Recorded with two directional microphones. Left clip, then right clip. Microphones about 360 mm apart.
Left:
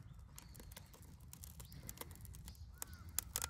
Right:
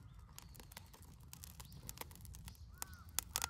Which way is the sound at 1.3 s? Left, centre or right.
Centre.